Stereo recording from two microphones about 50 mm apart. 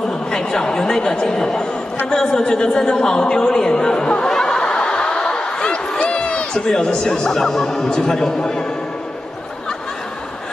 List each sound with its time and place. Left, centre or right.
0.3 s a woman's voice: centre
5.9 s a sound: left
6.7 s speech: centre